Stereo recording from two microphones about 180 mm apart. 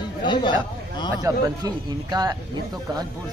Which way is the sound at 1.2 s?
20° right (ahead or behind).